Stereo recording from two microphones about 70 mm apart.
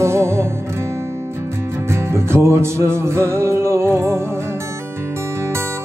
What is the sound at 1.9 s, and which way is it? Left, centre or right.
Music, right.